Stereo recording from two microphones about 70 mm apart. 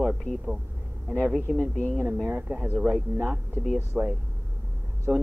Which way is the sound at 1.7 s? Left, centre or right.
Left.